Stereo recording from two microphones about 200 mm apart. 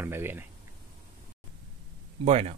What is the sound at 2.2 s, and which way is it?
Speech, 30° right (ahead or behind).